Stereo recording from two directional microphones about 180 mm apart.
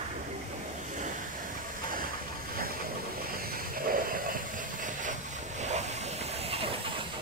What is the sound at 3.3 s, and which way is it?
Hiss, 55° right (ahead or behind).